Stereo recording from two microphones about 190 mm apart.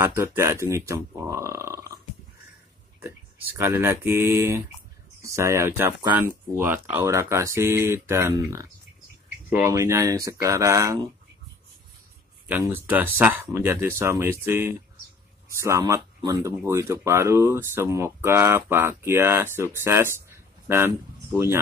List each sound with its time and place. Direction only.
0.0 s speech: 10° right (ahead or behind)
3.0 s speech: 10° right (ahead or behind)
12.4 s speech: 10° right (ahead or behind)
20.2 s a sound: 10° right (ahead or behind)